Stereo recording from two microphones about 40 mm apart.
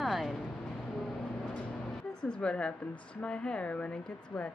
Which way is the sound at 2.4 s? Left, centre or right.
Left.